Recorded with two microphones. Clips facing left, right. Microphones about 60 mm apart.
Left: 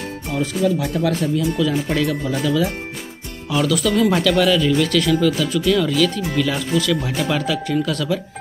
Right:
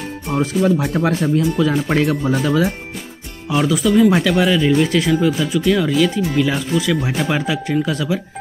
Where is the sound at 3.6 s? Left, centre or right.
Centre.